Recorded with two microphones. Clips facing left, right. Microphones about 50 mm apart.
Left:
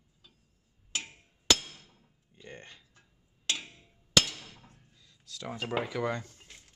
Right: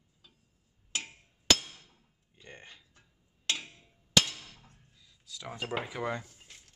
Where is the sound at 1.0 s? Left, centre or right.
Centre.